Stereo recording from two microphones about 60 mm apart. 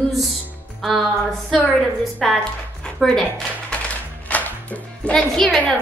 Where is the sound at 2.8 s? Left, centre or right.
Centre.